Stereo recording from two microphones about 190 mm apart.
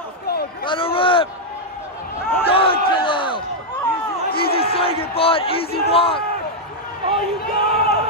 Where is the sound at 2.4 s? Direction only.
30° left (ahead or behind).